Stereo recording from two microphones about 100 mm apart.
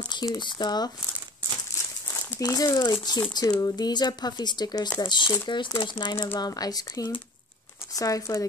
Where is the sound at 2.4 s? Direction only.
35° left (ahead or behind).